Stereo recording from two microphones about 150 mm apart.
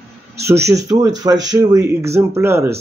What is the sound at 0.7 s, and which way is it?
Speech, 20° right (ahead or behind).